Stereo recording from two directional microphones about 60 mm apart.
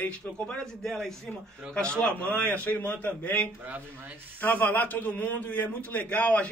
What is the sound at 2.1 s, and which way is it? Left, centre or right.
A man's voice, left.